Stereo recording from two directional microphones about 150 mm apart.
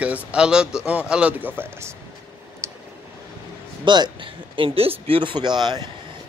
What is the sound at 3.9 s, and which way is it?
Speech, 30° right (ahead or behind).